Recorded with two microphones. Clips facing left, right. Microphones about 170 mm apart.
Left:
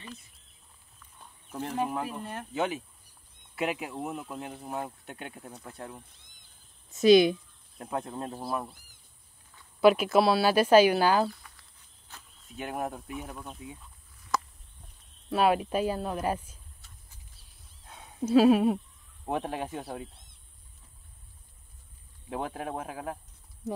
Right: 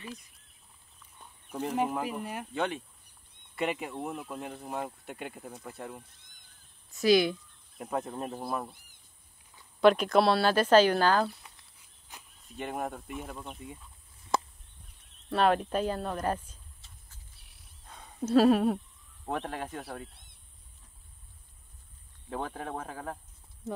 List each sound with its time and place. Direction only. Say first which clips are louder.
2.0 s speech: right 1 dB; 10° right (ahead or behind)
2.5 s speech: left 3 dB; 5° left (ahead or behind)
6.9 s speech: left 5 dB; 20° left (ahead or behind)
7.8 s speech: even; centre (ahead or behind)
9.8 s speech: left 1 dB; 5° left (ahead or behind)
11.2 s a sound: left 2 dB; 20° right (ahead or behind)
12.5 s speech: left 1 dB; centre (ahead or behind)
14.3 s a sound: right 1 dB; 25° right (ahead or behind)
15.2 s speech: left 1 dB; 5° left (ahead or behind)
17.8 s dog: left 2 dB; 5° left (ahead or behind)
19.2 s speech: left 3 dB; 15° left (ahead or behind)
22.3 s speech: left 2 dB; 10° left (ahead or behind)